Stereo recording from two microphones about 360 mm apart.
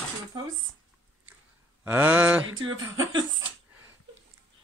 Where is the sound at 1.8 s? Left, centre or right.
Centre.